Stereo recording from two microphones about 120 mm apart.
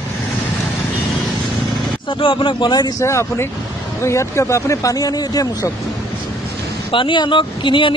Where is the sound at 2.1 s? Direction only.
45° left (ahead or behind).